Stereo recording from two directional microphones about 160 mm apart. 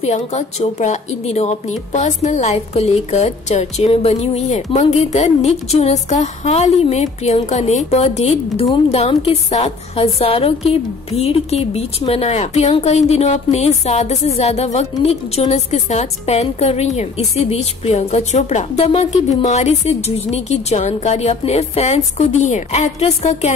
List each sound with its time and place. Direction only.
0.0 s a woman's voice: 45° left (ahead or behind)